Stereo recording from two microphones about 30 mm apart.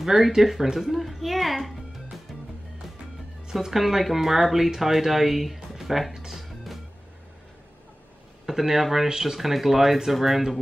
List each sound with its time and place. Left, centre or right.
0.0 s a child's voice: centre
2.3 s music: centre
3.6 s speech: centre
8.5 s speech: centre